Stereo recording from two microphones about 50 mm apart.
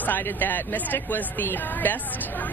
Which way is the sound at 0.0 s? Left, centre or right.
Left.